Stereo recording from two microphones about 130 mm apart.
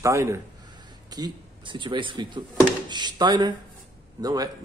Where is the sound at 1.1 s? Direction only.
35° right (ahead or behind).